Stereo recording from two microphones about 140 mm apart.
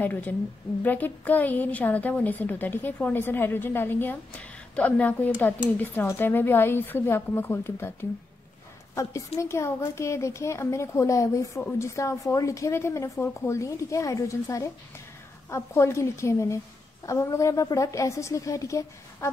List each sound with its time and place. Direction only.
0.0 s a woman's voice: 10° left (ahead or behind)